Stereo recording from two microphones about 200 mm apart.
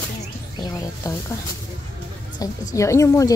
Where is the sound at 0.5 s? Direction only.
20° left (ahead or behind).